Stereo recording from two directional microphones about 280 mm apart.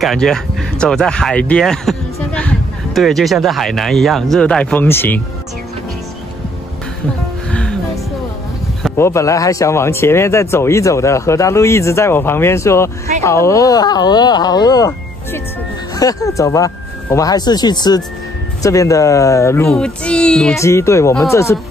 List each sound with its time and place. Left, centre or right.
0.0 s speech: centre
7.5 s music: centre
8.8 s a man's voice: centre